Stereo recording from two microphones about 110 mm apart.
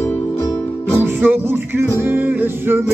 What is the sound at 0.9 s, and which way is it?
Music, 20° right (ahead or behind).